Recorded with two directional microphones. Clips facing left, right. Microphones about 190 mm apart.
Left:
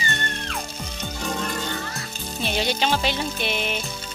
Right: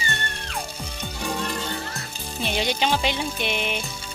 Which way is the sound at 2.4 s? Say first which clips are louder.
Even; 15° right (ahead or behind).